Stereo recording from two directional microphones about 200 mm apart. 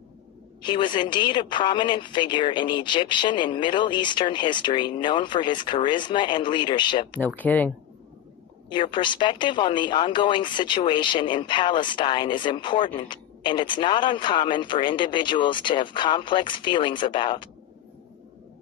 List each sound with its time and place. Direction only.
0.6 s speech: 25° left (ahead or behind)
7.3 s speech: 10° left (ahead or behind)
8.6 s speech: 25° left (ahead or behind)